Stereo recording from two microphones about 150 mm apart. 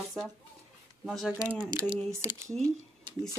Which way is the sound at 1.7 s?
25° right (ahead or behind).